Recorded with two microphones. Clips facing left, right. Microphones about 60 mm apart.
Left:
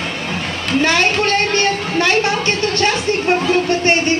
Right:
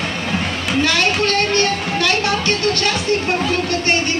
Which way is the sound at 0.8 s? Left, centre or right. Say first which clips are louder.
Left 2 dB; left.